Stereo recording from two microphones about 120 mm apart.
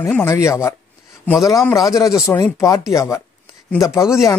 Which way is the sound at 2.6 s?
25° left (ahead or behind).